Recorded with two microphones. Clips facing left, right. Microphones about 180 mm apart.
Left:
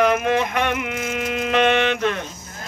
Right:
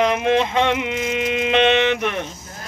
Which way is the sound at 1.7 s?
20° right (ahead or behind).